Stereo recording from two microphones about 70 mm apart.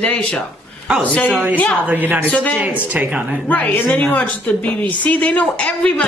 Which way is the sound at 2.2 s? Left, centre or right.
Left.